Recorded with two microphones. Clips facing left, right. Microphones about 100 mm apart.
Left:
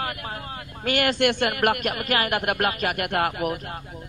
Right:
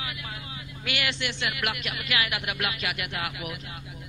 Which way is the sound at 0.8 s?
45° left (ahead or behind).